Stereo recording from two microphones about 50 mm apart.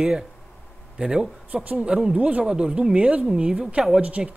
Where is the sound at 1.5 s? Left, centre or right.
Right.